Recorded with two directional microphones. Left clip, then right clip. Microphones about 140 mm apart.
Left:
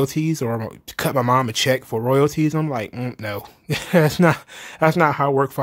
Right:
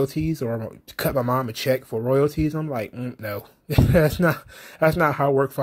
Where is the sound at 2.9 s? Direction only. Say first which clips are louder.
Left 4 dB; 30° left (ahead or behind).